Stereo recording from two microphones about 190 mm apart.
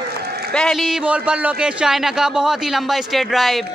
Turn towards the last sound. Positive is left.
turn(degrees=0)  # may be behind; listen again after turning